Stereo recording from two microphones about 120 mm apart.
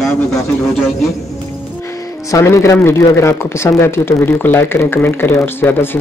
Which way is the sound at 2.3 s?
25° left (ahead or behind).